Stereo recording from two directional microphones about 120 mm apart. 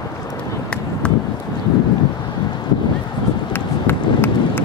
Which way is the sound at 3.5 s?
20° left (ahead or behind).